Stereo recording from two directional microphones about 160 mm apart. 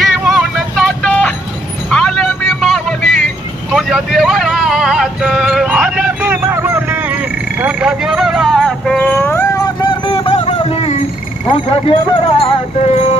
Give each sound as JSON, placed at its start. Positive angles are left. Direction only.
{"t": 0.0, "sound": "vehicle", "side_deg": 0}
{"t": 1.9, "sound": "music", "side_deg": 5}
{"t": 3.7, "sound": "vehicle", "side_deg": 0}
{"t": 9.8, "sound": "music", "side_deg": 30}
{"t": 11.4, "sound": "a sound", "side_deg": 30}
{"t": 12.8, "sound": "a sound", "side_deg": 40}